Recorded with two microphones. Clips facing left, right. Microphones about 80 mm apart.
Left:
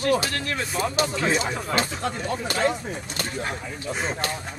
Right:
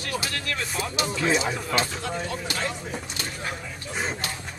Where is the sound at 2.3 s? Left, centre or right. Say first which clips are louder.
Left 6 dB; left.